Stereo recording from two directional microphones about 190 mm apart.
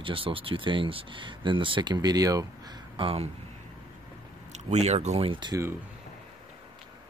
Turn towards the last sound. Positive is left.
turn(degrees=-20)  # may be behind; listen again after turning